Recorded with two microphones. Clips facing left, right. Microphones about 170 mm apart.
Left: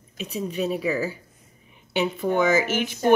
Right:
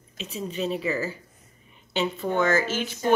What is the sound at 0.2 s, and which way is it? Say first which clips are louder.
Speech: left 3 dB; 10° left (ahead or behind).